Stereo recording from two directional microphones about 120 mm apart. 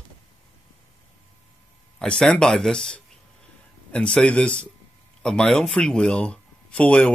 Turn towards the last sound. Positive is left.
turn(degrees=10)  # may be behind; listen again after turning